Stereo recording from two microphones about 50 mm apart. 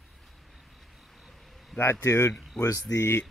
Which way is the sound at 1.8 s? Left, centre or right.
Left.